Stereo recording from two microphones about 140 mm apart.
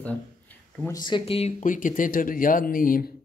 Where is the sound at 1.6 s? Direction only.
70° left (ahead or behind); by 3.0 s 90° left.